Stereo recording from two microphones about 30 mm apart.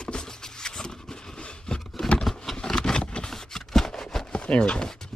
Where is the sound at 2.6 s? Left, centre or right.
Centre.